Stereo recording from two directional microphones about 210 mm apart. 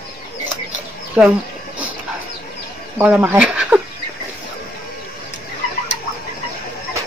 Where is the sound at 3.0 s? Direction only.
10° right (ahead or behind).